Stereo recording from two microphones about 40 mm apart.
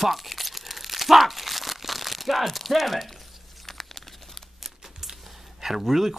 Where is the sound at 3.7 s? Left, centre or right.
Centre.